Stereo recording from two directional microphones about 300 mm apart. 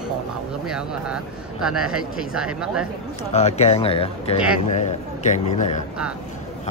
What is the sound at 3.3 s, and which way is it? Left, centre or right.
Speech, left.